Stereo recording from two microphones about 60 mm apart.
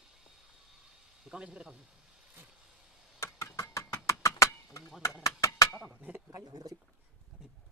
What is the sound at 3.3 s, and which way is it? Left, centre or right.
Vehicle, left.